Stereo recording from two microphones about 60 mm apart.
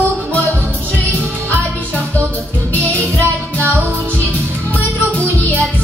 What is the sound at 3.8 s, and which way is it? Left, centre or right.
Music, right.